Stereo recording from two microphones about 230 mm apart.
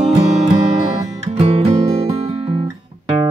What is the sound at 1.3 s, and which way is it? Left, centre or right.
Music, right.